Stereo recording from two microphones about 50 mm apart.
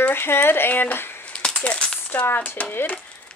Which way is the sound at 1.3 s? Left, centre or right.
Centre.